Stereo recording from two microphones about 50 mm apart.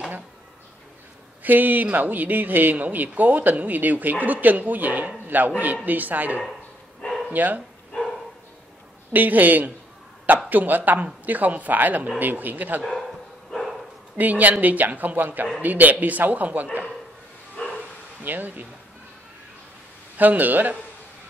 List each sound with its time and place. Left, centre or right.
1.4 s a man's voice: right
9.1 s a man's voice: right
14.1 s a man's voice: right
17.6 s bow-wow: left
18.2 s a man's voice: right
20.2 s a man's voice: right